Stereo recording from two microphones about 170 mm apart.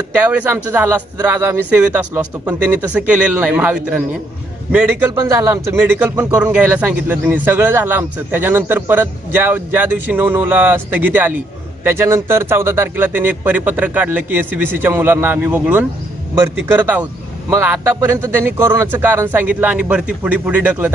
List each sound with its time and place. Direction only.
0.1 s a man's voice: 10° right (ahead or behind)
5.1 s speech: 20° right (ahead or behind)
5.9 s a man's voice: 10° right (ahead or behind)